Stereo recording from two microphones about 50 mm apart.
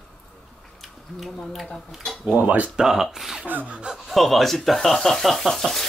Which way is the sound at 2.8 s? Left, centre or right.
Centre.